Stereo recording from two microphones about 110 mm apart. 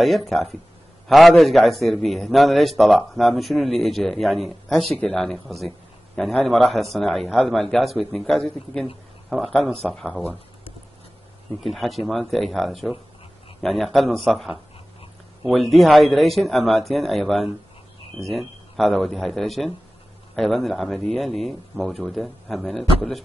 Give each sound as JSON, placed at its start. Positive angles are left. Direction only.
{"t": 0.0, "sound": "a man's voice", "side_deg": 0}
{"t": 9.6, "sound": "speech", "side_deg": 10}
{"t": 11.6, "sound": "a man's voice", "side_deg": 0}